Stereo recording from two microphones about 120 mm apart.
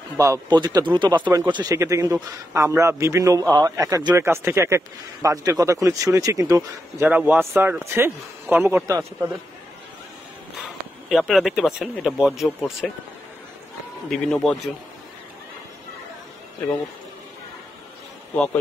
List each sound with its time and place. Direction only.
0.2 s speech: 30° right (ahead or behind)
1.8 s a man's voice: 25° right (ahead or behind)
8.8 s a man's voice: 30° right (ahead or behind)
10.6 s speech: centre (ahead or behind)
14.1 s speech: 5° left (ahead or behind)
18.3 s a man's voice: 10° left (ahead or behind)